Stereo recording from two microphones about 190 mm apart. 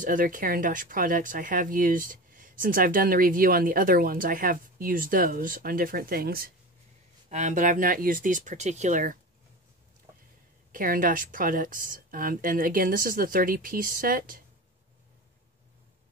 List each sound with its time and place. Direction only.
0.0 s speech: 45° right (ahead or behind)
7.2 s speech: 40° right (ahead or behind)
10.7 s speech: 45° right (ahead or behind)